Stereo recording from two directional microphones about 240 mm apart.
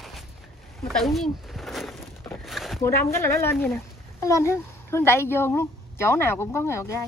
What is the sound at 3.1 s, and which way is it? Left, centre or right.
A woman's voice, centre.